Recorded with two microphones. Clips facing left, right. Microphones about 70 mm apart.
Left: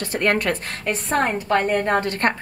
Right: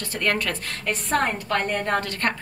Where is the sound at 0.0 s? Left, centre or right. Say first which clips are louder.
Left 4 dB; left.